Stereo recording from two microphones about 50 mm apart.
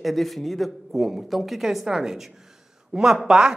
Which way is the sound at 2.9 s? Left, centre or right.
Right.